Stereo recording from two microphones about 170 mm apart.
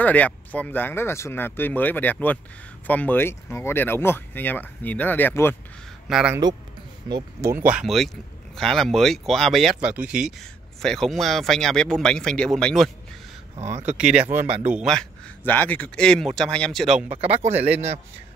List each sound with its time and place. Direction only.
0.0 s speech: 10° left (ahead or behind)
6.0 s speech: 5° right (ahead or behind)
7.1 s speech: 25° right (ahead or behind)
7.5 s speech: 10° right (ahead or behind)
13.9 s speech: 5° right (ahead or behind)
17.1 s speech: 40° right (ahead or behind)